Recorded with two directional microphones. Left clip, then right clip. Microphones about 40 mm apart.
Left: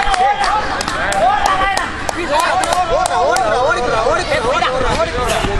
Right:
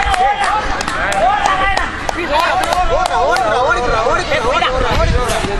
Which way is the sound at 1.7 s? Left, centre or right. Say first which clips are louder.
Right 1 dB; right.